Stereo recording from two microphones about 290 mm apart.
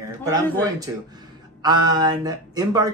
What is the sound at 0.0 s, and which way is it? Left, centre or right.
Speech, centre.